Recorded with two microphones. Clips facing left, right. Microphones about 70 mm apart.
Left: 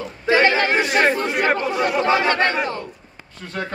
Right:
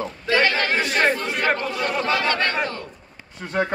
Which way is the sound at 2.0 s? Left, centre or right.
Left.